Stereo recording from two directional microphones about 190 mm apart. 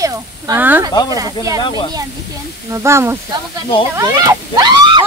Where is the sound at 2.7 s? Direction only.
15° right (ahead or behind).